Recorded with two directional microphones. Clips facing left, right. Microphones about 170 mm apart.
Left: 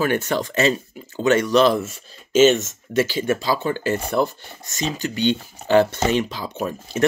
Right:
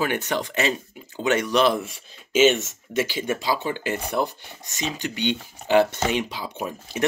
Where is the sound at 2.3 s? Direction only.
40° left (ahead or behind).